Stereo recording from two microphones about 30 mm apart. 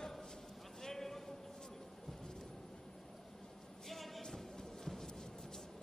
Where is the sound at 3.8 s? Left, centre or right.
Centre.